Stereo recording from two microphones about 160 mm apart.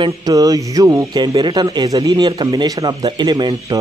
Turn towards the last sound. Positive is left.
turn(degrees=-25)  # may be behind; listen again after turning